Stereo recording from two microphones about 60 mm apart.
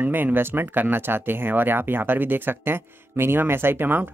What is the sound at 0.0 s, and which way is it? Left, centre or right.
Speech, right.